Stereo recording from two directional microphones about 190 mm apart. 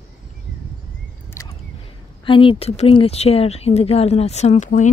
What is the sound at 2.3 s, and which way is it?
Speech, 25° left (ahead or behind).